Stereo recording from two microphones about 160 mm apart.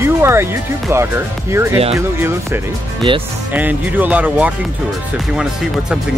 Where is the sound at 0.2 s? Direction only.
15° right (ahead or behind).